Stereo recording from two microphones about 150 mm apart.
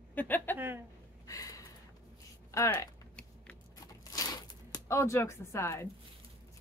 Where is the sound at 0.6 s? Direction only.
15° right (ahead or behind).